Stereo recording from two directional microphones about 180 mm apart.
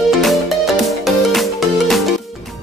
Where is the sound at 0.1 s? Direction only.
Centre (ahead or behind).